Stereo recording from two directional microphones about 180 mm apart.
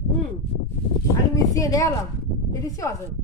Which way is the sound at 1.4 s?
20° left (ahead or behind).